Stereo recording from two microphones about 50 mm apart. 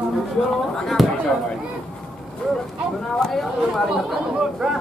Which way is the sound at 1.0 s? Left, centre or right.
Centre.